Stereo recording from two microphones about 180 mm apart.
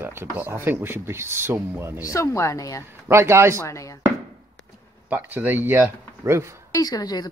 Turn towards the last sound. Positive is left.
turn(degrees=20)  # may be behind; listen again after turning